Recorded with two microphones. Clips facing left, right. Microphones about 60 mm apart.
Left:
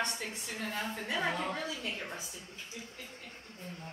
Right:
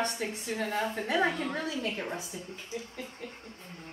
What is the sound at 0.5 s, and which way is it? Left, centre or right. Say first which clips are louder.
Speech: right 6 dB; right.